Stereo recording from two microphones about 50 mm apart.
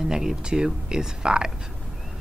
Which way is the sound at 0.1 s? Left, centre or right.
Centre.